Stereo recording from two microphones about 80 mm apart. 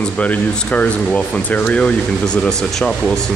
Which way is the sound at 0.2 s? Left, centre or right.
Centre.